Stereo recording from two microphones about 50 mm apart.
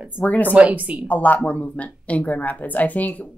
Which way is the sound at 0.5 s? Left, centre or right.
Right.